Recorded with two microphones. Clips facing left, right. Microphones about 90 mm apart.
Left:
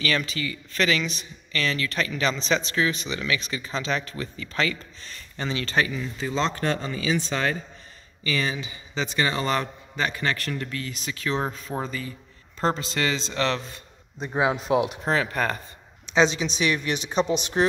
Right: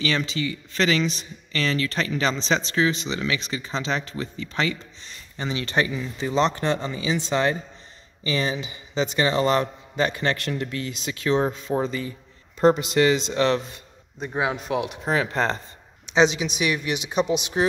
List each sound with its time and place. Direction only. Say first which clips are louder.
0.0 s speech: right 2 dB; 25° right (ahead or behind)
12.5 s speech: right 7 dB; 15° right (ahead or behind)
14.3 s speech: left 3 dB; 10° left (ahead or behind)
15.0 s speech: right 1 dB; 20° right (ahead or behind)